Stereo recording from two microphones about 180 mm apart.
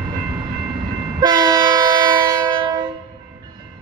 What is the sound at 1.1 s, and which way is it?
Train, 20° right (ahead or behind).